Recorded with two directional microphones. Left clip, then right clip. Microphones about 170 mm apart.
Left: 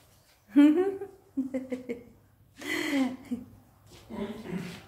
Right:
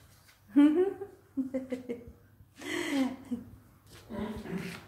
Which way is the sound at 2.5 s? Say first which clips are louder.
Left 3 dB; 15° left (ahead or behind).